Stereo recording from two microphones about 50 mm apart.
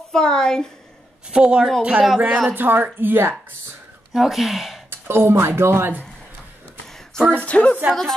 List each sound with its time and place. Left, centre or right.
0.1 s a woman's voice: centre
1.3 s a woman's voice: centre
2.5 s a woman's voice: right
4.1 s speech: centre
4.8 s speech: right
7.3 s speech: left